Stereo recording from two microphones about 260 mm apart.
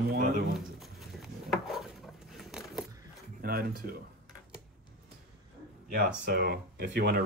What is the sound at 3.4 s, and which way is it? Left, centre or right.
Speech, right.